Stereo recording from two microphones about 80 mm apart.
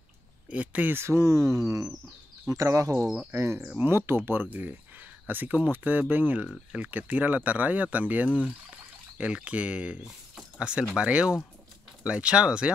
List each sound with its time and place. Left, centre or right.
0.5 s speech: centre
0.9 s speech: right; by 12.7 s centre